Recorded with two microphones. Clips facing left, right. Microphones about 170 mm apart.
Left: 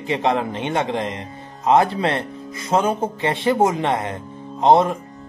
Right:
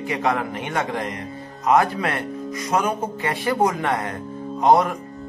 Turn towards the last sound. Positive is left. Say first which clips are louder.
# left 2 dB
turn(degrees=25)  # may be behind; listen again after turning